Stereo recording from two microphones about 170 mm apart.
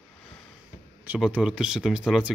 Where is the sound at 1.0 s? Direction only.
10° right (ahead or behind).